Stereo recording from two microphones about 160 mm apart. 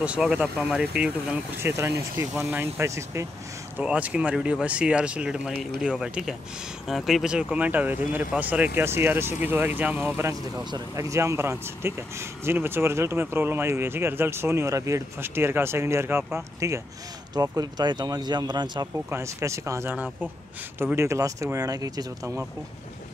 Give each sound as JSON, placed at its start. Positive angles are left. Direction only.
{"t": 0.0, "sound": "speech", "side_deg": -5}
{"t": 1.8, "sound": "speech", "side_deg": -20}